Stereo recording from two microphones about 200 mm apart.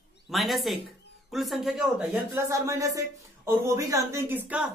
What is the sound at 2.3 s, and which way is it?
Speech, 15° right (ahead or behind).